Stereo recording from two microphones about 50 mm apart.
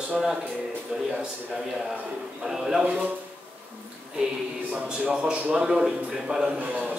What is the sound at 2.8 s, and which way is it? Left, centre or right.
Speech, right.